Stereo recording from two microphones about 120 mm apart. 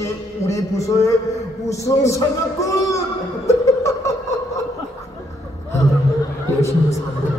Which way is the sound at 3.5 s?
25° left (ahead or behind).